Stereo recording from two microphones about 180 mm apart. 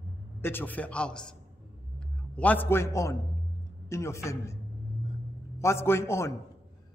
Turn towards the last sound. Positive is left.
turn(degrees=15)  # may be behind; listen again after turning